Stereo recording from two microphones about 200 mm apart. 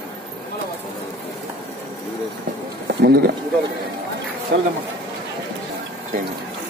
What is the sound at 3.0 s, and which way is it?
Speech, 50° right (ahead or behind).